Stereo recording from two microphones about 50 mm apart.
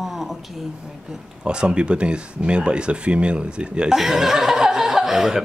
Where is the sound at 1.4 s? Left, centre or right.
Centre.